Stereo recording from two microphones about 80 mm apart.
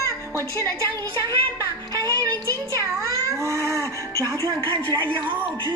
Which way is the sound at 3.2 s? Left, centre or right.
Right.